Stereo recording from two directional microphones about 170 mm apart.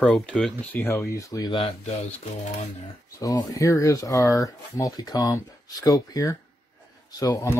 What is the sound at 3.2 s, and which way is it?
Speech, 20° left (ahead or behind).